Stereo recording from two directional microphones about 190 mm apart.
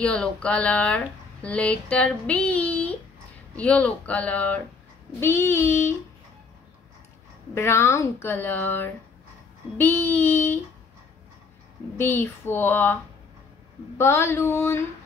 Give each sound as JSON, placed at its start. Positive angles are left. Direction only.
{"t": 0.0, "sound": "speech", "side_deg": 5}
{"t": 7.5, "sound": "speech", "side_deg": 15}
{"t": 12.0, "sound": "speech", "side_deg": 10}